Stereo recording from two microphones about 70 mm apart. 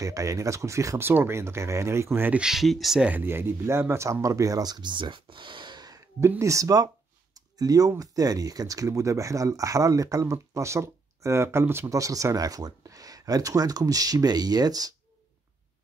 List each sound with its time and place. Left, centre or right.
0.0 s speech: right
1.0 s speech: right
2.3 s speech: centre
3.2 s speech: right
3.9 s speech: right
5.6 s a sound: right
6.2 s speech: right
11.9 s speech: right